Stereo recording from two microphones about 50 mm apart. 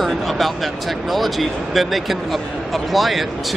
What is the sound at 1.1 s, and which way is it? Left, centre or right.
Speech, centre.